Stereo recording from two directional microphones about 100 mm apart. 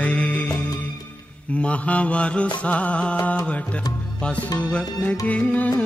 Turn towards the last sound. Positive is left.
turn(degrees=15)  # may be behind; listen again after turning